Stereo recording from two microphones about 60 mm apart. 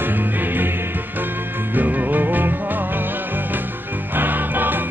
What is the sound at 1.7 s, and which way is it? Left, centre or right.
Music, right.